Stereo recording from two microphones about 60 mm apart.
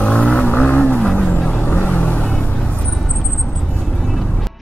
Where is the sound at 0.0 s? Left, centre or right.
Centre.